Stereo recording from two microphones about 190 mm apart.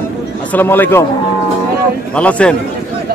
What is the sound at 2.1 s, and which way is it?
Speech, 5° left (ahead or behind).